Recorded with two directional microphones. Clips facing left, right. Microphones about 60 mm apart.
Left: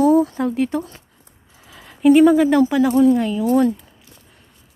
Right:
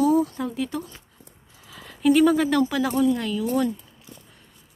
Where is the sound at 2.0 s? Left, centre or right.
Left.